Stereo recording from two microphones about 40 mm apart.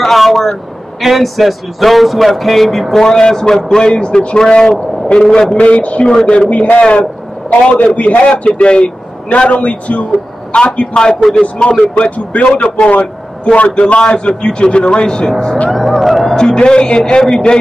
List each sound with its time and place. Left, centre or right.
0.0 s a man's voice: centre
3.0 s a man's voice: centre
5.6 s a man's voice: left
8.3 s speech: left
11.1 s a man's voice: centre
11.5 s speech: left
15.1 s a man's voice: centre
15.7 s music: centre
16.3 s a man's voice: centre